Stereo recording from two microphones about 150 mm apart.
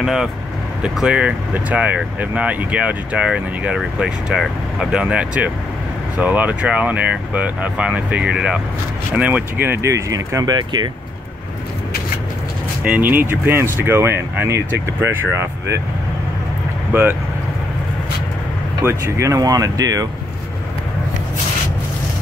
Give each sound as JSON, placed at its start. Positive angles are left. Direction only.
{"t": 0.0, "sound": "speech", "side_deg": -5}
{"t": 12.8, "sound": "speech", "side_deg": -10}
{"t": 16.9, "sound": "speech", "side_deg": -15}
{"t": 18.8, "sound": "speech", "side_deg": -20}